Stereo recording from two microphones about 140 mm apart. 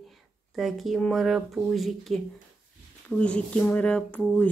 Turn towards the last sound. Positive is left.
turn(degrees=10)  # may be behind; listen again after turning